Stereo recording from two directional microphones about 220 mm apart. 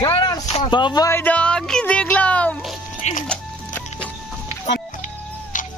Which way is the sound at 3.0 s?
30° left (ahead or behind).